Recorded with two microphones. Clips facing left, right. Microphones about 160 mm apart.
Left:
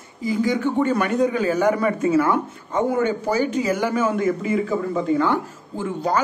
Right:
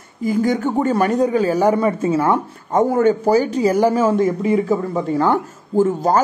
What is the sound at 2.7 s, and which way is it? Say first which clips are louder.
A man's voice: right 6 dB; 45° right (ahead or behind).